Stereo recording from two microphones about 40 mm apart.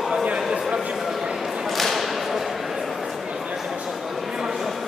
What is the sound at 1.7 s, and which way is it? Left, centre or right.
Whip, centre.